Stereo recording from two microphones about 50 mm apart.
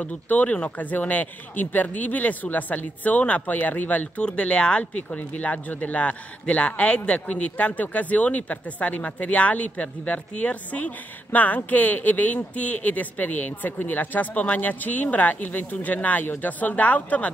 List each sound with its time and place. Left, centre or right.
0.0 s speech: left
4.3 s speech: left